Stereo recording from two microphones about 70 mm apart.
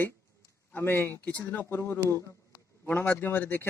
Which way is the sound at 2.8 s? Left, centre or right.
Left.